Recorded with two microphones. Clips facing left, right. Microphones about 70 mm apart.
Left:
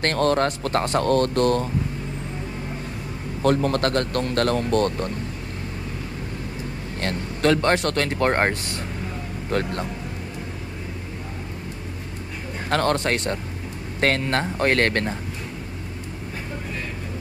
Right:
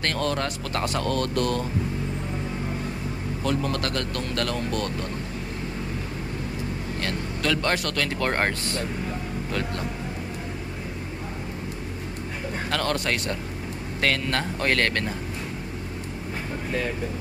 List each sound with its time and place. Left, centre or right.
0.0 s speech: left
3.4 s speech: left
7.0 s speech: left
9.5 s speech: left
12.6 s speech: left